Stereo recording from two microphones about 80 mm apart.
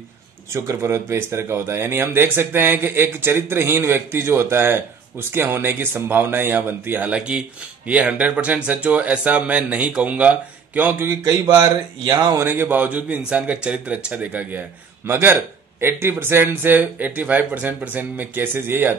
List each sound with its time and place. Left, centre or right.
0.5 s speech: right
11.2 s speech: right
12.4 s speech: right
15.0 s speech: right